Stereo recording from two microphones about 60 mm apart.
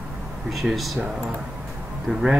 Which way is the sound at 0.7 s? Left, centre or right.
Centre.